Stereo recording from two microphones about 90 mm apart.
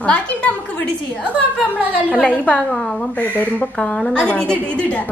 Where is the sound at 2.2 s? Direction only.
10° left (ahead or behind).